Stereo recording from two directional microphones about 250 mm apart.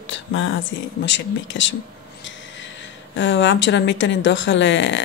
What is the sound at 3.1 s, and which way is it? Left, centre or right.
Speech, left.